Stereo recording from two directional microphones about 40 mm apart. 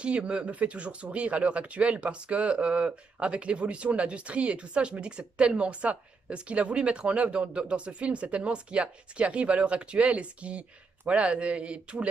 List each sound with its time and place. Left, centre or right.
0.0 s a man's voice: right